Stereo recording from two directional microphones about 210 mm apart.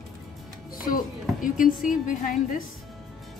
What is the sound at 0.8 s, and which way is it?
A woman's voice, 40° left (ahead or behind).